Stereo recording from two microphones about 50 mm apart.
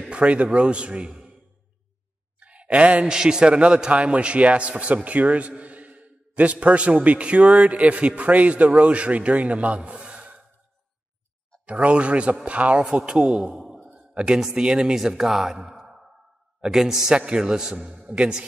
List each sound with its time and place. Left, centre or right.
0.1 s a man's voice: right
2.4 s a sound: right
3.1 s a man's voice: centre
11.6 s a man's voice: right
13.1 s a man's voice: centre